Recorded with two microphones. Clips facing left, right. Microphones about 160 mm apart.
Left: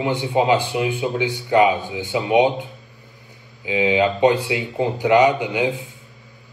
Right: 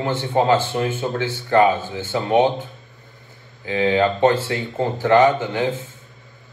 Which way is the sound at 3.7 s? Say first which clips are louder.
Even; 10° left (ahead or behind).